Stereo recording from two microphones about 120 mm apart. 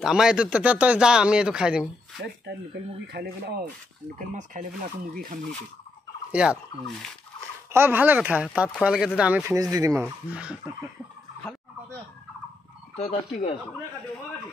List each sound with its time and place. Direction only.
0.0 s speech: 5° right (ahead or behind)
6.3 s speech: 10° right (ahead or behind)
7.7 s speech: 15° right (ahead or behind)
9.6 s speech: 30° right (ahead or behind)
10.0 s speech: 10° right (ahead or behind)
12.9 s fowl: 55° left (ahead or behind)